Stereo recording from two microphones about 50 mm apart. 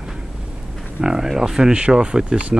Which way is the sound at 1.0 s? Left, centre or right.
Centre.